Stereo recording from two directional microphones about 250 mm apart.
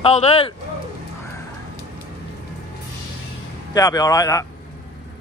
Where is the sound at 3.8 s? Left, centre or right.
Centre.